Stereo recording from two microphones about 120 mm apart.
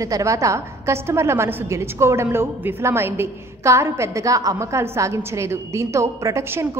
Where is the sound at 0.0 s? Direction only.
25° right (ahead or behind).